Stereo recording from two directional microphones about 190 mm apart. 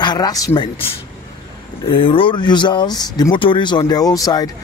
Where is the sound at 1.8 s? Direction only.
30° left (ahead or behind).